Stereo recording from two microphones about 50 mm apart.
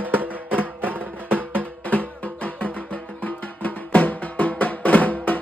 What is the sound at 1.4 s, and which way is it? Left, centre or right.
Music, left.